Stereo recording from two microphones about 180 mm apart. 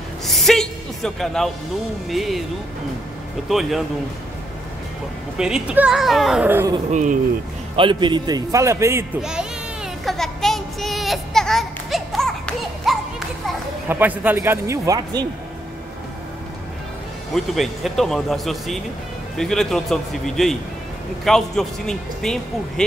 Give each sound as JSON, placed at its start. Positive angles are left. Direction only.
{"t": 0.2, "sound": "music", "side_deg": 0}
{"t": 2.0, "sound": "speech", "side_deg": 0}
{"t": 3.4, "sound": "speech", "side_deg": 0}
{"t": 5.4, "sound": "speech", "side_deg": -5}
{"t": 6.9, "sound": "speech", "side_deg": -40}
{"t": 7.7, "sound": "a man's voice", "side_deg": -25}
{"t": 9.2, "sound": "a child's voice", "side_deg": -5}
{"t": 10.0, "sound": "a sound", "side_deg": 0}
{"t": 13.8, "sound": "speech", "side_deg": -10}
{"t": 17.3, "sound": "speech", "side_deg": 0}